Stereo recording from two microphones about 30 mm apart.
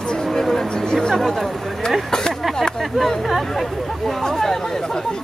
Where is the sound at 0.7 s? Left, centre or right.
Left.